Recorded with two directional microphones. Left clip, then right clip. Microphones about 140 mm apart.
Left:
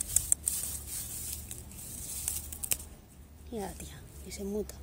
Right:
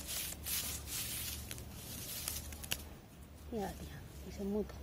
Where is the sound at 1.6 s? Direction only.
25° left (ahead or behind).